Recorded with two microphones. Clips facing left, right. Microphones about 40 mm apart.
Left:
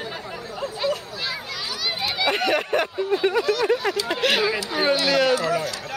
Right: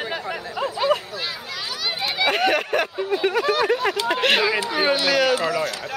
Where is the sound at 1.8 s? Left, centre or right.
Centre.